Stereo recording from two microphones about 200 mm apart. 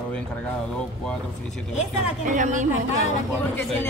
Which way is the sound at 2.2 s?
40° right (ahead or behind).